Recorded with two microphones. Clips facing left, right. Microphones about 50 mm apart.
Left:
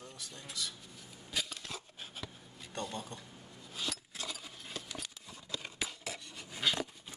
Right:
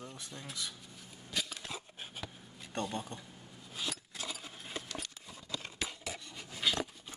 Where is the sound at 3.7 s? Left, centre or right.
Centre.